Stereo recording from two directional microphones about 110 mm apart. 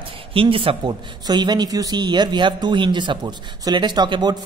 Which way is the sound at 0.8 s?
40° right (ahead or behind).